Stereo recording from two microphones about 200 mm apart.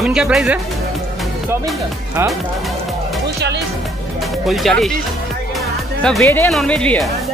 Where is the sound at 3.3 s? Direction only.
55° right (ahead or behind).